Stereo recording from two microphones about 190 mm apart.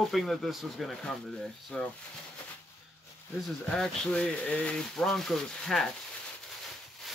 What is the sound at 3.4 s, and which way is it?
Speech, 5° left (ahead or behind).